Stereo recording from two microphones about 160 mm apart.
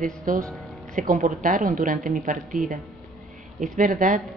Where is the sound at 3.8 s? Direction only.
55° right (ahead or behind).